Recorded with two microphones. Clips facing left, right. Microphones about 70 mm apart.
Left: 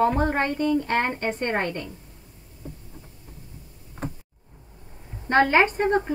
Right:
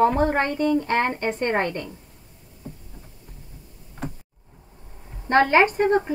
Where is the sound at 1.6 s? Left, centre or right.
Right.